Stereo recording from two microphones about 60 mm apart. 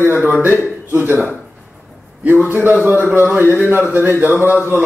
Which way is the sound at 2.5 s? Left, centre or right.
Right.